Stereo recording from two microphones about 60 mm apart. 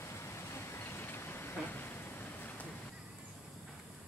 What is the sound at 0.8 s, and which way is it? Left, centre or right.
Vehicle, left.